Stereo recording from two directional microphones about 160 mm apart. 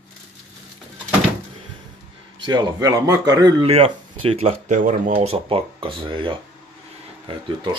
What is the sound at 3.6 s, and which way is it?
Speech, 40° right (ahead or behind).